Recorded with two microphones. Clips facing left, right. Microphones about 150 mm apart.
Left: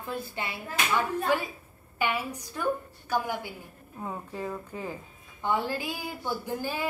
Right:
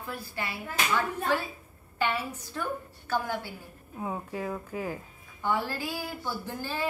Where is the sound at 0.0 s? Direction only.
20° left (ahead or behind).